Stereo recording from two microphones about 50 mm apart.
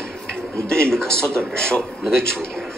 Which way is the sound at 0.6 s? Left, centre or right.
Centre.